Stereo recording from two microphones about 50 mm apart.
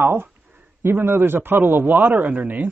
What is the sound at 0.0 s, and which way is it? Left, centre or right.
A man's voice, right.